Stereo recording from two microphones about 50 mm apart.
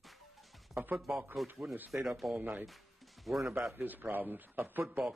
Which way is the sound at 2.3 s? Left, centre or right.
Right.